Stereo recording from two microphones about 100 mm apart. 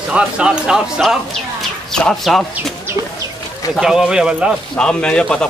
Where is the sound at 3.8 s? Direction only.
5° right (ahead or behind).